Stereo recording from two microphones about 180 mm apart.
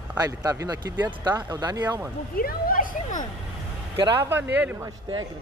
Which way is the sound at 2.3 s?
55° left (ahead or behind).